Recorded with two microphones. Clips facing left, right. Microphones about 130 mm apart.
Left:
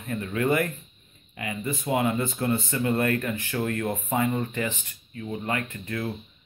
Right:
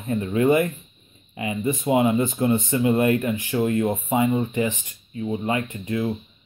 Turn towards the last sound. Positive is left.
turn(degrees=-20)  # may be behind; listen again after turning